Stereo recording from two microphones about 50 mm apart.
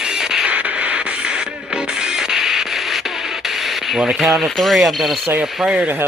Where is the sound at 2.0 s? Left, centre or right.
Centre.